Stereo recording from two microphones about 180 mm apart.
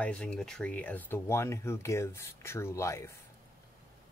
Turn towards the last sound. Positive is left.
turn(degrees=15)  # may be behind; listen again after turning